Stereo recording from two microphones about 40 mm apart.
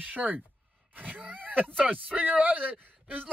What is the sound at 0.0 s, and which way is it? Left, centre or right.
Speech, right.